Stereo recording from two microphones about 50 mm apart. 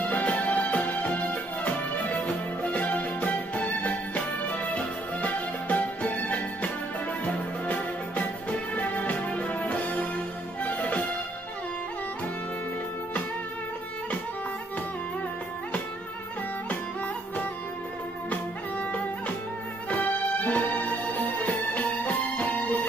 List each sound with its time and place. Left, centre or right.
0.0 s music: left
18.3 s music: left